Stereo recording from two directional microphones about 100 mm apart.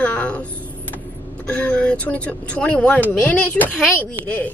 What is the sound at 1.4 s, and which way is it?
Speech, 15° left (ahead or behind).